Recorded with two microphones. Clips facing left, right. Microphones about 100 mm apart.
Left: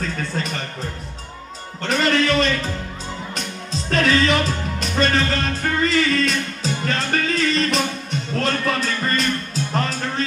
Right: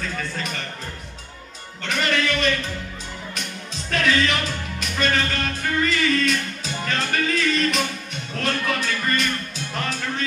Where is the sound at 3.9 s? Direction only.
35° left (ahead or behind).